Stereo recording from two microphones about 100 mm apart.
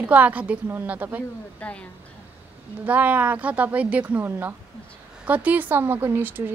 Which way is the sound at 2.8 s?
15° right (ahead or behind).